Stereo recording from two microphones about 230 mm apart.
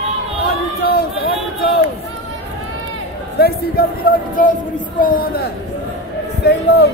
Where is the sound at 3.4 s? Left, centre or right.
Left.